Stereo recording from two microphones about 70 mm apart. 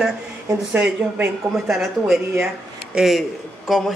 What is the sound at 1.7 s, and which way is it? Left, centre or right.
A woman's voice, centre.